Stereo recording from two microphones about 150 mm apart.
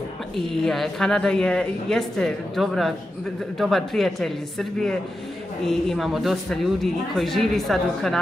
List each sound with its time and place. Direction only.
0.7 s a woman's voice: centre (ahead or behind)